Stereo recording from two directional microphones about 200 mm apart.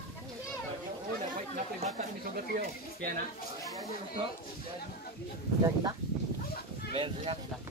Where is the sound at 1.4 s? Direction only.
35° right (ahead or behind).